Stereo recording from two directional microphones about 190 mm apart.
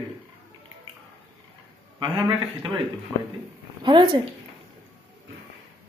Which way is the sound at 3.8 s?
25° right (ahead or behind).